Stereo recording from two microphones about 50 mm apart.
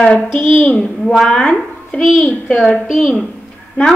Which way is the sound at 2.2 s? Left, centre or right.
Left.